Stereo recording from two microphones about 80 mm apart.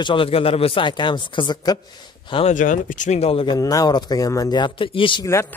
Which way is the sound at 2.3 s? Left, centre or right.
Left.